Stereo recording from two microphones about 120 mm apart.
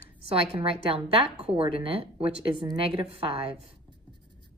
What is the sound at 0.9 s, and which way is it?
A woman's voice, 50° right (ahead or behind).